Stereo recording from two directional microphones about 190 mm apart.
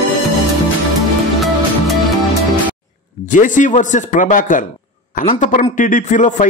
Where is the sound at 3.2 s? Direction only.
40° left (ahead or behind).